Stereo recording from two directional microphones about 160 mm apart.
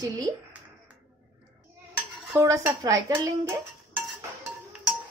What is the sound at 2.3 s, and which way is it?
Speech, 20° right (ahead or behind).